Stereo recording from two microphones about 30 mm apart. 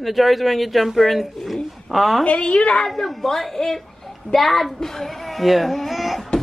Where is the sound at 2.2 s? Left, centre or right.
Left.